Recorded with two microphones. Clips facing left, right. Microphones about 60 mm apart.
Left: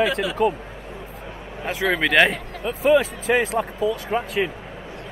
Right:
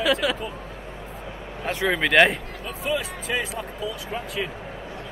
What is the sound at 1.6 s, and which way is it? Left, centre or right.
Speech, centre.